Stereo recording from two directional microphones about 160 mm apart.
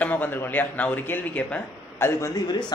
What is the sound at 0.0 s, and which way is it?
A man's voice, 10° left (ahead or behind).